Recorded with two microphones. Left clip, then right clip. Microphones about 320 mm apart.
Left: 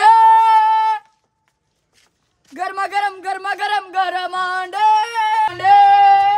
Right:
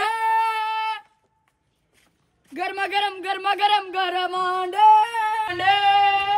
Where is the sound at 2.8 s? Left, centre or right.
Left.